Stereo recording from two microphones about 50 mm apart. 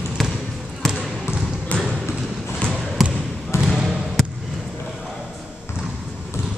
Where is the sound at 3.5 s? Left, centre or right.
Left.